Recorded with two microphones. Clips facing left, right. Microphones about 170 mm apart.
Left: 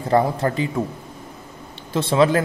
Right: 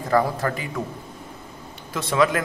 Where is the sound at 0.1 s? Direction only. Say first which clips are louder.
Left 3 dB; 25° left (ahead or behind).